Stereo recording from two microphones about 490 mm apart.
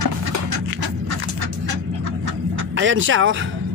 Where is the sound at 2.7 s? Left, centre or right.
Right.